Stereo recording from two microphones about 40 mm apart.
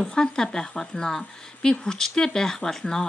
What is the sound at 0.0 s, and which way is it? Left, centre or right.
A woman's voice, centre.